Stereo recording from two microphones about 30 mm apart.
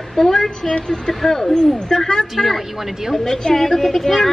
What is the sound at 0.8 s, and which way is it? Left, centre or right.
Speech, left.